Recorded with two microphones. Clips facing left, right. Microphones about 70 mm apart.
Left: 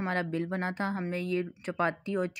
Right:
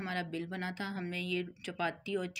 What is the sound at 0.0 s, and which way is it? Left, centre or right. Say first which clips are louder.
Speech: left 7 dB; left.